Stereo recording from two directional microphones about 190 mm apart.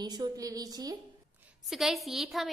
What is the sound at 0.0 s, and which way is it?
Speech, 20° right (ahead or behind).